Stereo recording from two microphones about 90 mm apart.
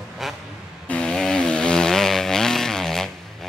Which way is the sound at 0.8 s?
10° left (ahead or behind).